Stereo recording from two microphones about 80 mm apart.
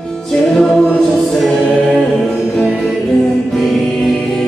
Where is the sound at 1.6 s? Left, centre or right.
Centre.